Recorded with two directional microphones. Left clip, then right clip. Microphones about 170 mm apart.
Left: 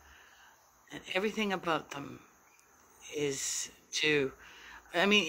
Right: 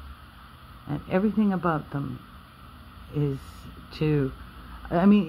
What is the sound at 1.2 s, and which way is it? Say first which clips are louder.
Speech: right 6 dB; 15° left (ahead or behind).